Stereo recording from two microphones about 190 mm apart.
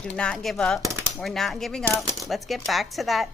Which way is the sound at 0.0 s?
5° left (ahead or behind).